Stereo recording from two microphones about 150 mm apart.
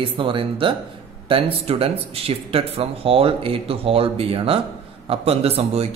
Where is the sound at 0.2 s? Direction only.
35° right (ahead or behind).